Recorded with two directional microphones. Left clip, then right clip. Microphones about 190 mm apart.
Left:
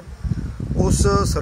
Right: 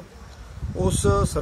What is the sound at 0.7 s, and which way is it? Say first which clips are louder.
Speech: left 3 dB; 5° left (ahead or behind).